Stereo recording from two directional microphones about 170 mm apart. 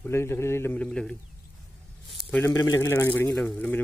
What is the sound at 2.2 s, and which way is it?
Speech, 10° left (ahead or behind).